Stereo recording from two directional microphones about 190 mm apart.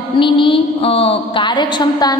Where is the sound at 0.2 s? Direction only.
25° left (ahead or behind).